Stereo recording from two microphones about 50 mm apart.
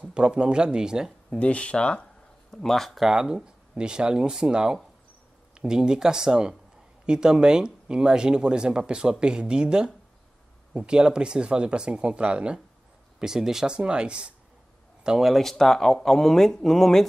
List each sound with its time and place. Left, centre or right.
0.0 s speech: right
1.4 s speech: left
2.5 s speech: centre
3.1 s speech: centre
13.2 s speech: centre
15.0 s speech: centre